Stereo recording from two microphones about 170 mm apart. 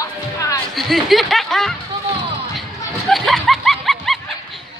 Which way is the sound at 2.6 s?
Centre (ahead or behind).